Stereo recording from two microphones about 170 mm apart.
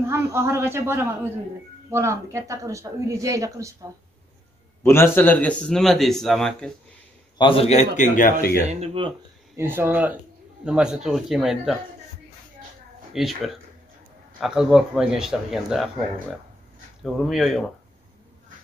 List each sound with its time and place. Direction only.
0.0 s a woman's voice: 15° right (ahead or behind)
4.8 s speech: 15° left (ahead or behind)
7.3 s a man's voice: 30° left (ahead or behind); by 8.6 s 60° left (ahead or behind)
8.6 s speech: 35° right (ahead or behind)
9.6 s speech: 10° right (ahead or behind)
13.1 s speech: centre (ahead or behind)
17.0 s speech: centre (ahead or behind)